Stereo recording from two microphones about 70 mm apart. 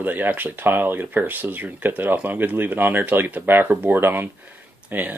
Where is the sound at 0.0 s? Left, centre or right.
Right.